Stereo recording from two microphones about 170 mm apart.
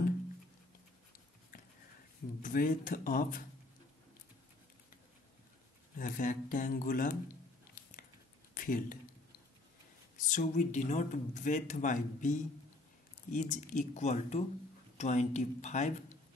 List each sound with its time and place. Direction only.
2.4 s speech: 50° left (ahead or behind)
5.9 s speech: 50° left (ahead or behind)
8.5 s speech: 55° left (ahead or behind)
10.2 s speech: 50° left (ahead or behind)